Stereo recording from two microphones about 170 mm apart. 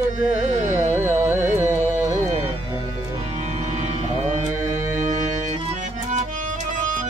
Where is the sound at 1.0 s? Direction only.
15° right (ahead or behind).